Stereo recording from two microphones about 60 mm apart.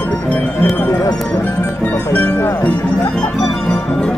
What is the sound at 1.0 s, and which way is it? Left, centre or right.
Speech, left.